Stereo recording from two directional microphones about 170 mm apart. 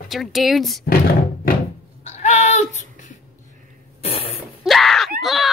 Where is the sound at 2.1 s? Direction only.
40° left (ahead or behind).